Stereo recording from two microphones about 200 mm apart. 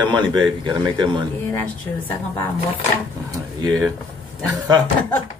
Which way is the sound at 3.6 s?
20° right (ahead or behind).